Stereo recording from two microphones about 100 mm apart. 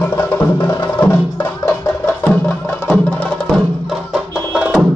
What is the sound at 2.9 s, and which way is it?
Music, 15° left (ahead or behind).